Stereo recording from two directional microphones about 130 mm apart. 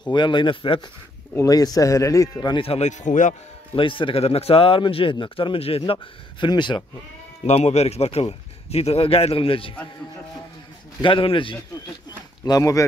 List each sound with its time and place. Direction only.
0.0 s speech: 35° left (ahead or behind)
1.3 s a man's voice: 25° left (ahead or behind)
2.4 s speech: 45° left (ahead or behind)
2.9 s speech: 70° left (ahead or behind)
3.7 s speech: 40° left (ahead or behind)
6.4 s speech: 35° left (ahead or behind)
7.4 s speech: 60° left (ahead or behind)
11.0 s speech: 40° left (ahead or behind)
12.4 s a man's voice: 25° left (ahead or behind)